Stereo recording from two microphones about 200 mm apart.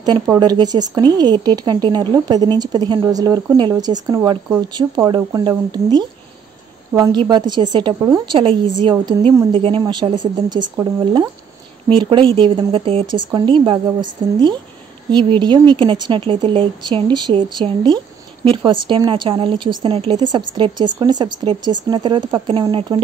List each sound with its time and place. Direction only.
0.0 s a woman's voice: 20° right (ahead or behind)